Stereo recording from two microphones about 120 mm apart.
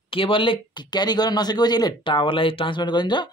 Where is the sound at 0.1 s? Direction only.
45° left (ahead or behind).